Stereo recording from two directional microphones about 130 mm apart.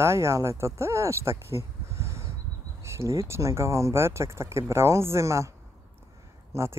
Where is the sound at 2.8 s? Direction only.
20° right (ahead or behind).